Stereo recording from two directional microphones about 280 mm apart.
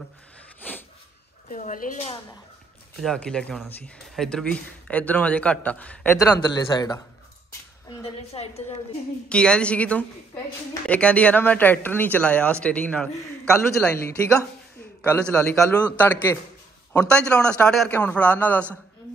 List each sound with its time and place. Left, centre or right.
0.6 s a sound: centre
1.5 s a woman's voice: left
3.0 s speech: centre
8.0 s a woman's voice: left
9.3 s speech: centre